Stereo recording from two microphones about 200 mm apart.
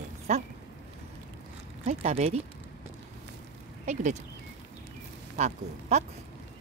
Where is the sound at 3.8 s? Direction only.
35° right (ahead or behind).